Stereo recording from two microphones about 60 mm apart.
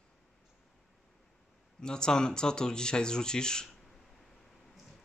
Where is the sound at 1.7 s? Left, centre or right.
Centre.